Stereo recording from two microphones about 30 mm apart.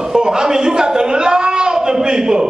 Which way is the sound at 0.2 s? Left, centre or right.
Right.